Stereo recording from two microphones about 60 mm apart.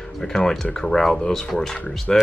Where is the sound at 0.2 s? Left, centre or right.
Centre.